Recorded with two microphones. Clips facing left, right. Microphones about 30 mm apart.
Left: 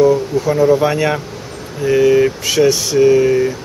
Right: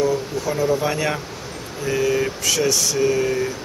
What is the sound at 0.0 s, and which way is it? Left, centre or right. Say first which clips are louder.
Speech: left 9 dB; centre.